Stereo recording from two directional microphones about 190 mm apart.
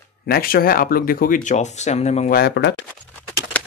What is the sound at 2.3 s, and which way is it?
Speech, 60° left (ahead or behind).